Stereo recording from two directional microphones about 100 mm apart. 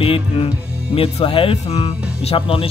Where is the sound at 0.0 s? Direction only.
75° left (ahead or behind).